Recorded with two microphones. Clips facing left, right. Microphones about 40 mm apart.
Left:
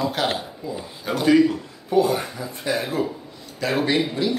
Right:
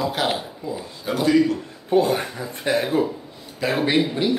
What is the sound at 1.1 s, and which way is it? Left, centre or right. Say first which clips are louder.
Speech: right 1 dB; centre.